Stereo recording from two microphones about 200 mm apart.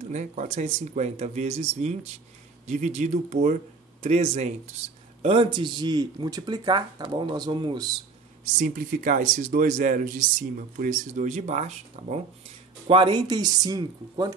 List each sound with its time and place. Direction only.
0.0 s speech: 35° right (ahead or behind)
8.5 s speech: 40° right (ahead or behind); by 14.3 s 20° right (ahead or behind)